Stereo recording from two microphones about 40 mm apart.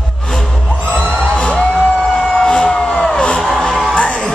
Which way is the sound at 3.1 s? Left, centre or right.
Left.